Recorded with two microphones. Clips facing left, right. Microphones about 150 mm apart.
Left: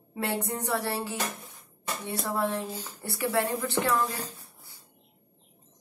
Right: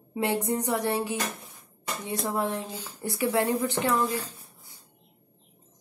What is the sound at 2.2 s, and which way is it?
A woman's voice, 15° right (ahead or behind).